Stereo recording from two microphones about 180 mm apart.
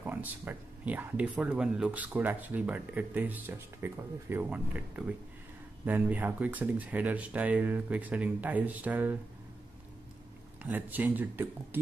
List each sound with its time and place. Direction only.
0.0 s speech: 10° right (ahead or behind)
10.6 s speech: 10° right (ahead or behind)